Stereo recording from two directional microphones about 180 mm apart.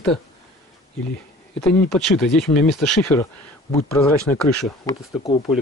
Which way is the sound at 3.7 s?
15° left (ahead or behind).